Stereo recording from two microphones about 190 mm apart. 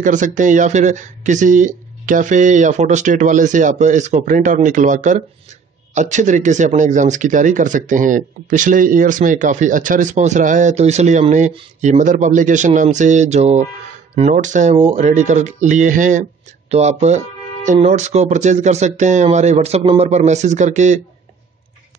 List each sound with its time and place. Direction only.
0.0 s speech: 40° right (ahead or behind)